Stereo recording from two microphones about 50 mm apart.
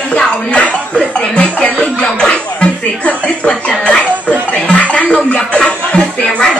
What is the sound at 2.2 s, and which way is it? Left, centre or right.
Music, left.